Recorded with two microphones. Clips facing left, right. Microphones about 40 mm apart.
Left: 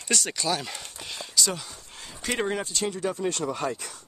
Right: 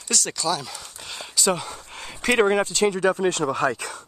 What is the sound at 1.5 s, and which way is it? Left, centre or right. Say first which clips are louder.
Speech: right 7 dB; right.